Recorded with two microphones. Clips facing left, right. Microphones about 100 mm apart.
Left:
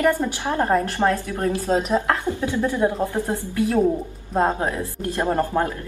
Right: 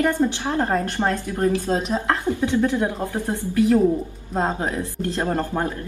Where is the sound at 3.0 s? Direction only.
20° left (ahead or behind).